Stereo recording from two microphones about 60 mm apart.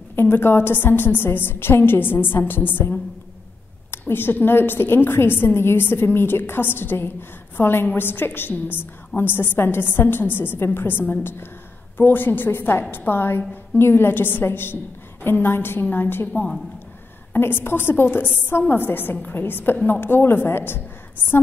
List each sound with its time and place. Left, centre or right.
0.1 s a woman's voice: left
3.9 s a woman's voice: left
17.3 s a woman's voice: left